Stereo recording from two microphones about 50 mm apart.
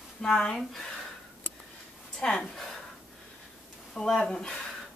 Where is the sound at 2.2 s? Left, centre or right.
Left.